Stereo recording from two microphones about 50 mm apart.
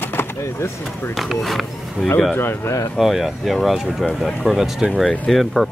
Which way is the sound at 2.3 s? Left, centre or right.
Left.